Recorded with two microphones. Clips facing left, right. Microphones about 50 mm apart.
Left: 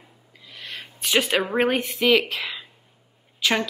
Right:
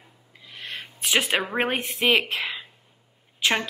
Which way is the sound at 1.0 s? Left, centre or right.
Right.